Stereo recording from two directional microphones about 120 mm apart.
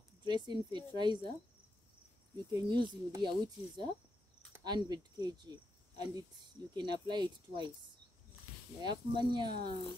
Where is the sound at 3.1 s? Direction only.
40° right (ahead or behind).